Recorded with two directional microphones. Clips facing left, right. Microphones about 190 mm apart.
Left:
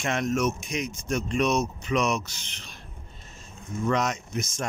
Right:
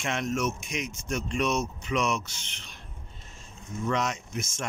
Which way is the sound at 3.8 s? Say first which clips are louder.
Left 3 dB; 45° left (ahead or behind).